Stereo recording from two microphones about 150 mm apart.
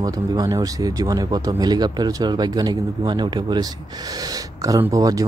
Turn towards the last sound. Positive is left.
turn(degrees=-25)  # may be behind; listen again after turning